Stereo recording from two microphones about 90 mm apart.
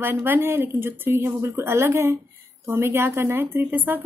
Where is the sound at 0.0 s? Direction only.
25° right (ahead or behind).